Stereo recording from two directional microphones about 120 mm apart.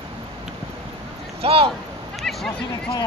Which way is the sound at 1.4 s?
50° right (ahead or behind).